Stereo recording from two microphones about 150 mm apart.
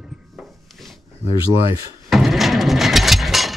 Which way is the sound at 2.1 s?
Centre (ahead or behind).